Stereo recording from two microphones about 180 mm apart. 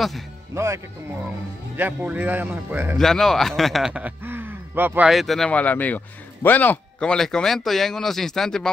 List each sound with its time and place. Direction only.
1.8 s a man's voice: 10° right (ahead or behind)
3.0 s a man's voice: centre (ahead or behind)